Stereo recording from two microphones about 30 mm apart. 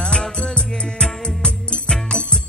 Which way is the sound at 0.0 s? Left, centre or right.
Left.